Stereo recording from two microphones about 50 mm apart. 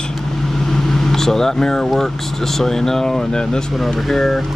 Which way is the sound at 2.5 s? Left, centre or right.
Centre.